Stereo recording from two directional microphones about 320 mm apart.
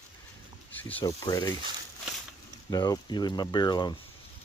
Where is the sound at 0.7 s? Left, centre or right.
Centre.